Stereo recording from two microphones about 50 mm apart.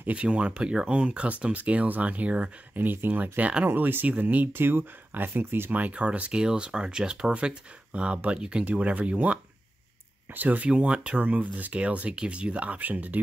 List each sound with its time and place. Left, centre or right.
0.1 s speech: right
2.7 s speech: right
3.6 s speech: right
4.5 s speech: right
5.7 s speech: right
10.3 s speech: right
10.7 s speech: right